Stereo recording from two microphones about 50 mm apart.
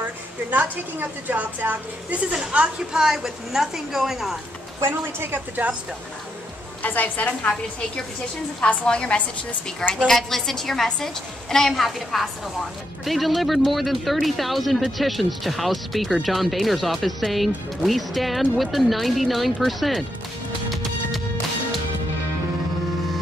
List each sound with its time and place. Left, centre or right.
0.0 s a woman's voice: right
2.5 s a woman's voice: centre
4.8 s a woman's voice: right
5.6 s a woman's voice: right
6.8 s a woman's voice: left
8.5 s a woman's voice: centre
10.0 s a woman's voice: centre